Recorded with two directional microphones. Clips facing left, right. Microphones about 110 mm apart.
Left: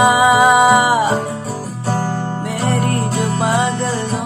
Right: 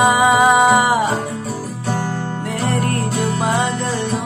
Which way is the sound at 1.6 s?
40° left (ahead or behind).